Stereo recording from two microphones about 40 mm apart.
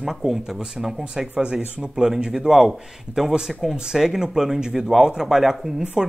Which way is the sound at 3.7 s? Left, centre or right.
Centre.